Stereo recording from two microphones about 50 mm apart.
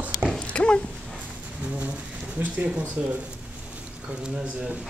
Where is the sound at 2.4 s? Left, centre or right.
Right.